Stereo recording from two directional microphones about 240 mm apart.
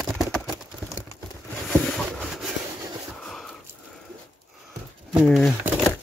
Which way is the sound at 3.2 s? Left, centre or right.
Centre.